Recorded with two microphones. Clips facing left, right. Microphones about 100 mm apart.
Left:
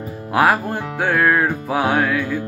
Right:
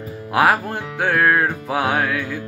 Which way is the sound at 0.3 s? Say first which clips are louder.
Left 1 dB; centre (ahead or behind).